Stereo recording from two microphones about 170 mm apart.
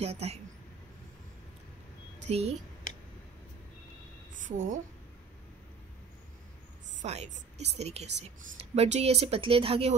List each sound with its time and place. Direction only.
0.0 s a woman's voice: 40° right (ahead or behind)
2.2 s speech: 40° right (ahead or behind)
4.3 s a woman's voice: 50° right (ahead or behind)
7.0 s a woman's voice: 40° right (ahead or behind)